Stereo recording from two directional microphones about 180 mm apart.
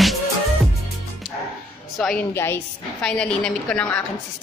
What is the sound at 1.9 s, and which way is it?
A woman's voice, 5° left (ahead or behind).